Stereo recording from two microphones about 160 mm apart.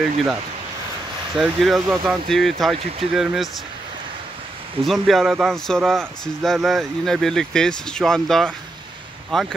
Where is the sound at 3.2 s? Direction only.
Centre (ahead or behind).